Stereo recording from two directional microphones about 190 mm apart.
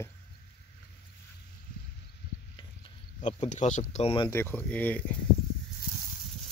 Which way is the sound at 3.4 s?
40° left (ahead or behind).